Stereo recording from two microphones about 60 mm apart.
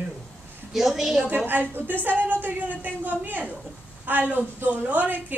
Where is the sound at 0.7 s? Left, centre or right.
Centre.